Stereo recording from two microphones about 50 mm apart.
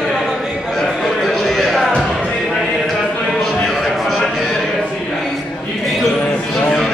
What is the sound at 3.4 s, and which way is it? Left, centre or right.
Livestock, centre.